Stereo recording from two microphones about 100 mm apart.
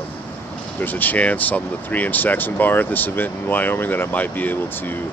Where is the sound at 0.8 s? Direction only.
20° left (ahead or behind).